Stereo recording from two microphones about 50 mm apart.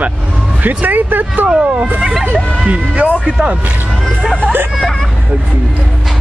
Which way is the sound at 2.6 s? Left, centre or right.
Right.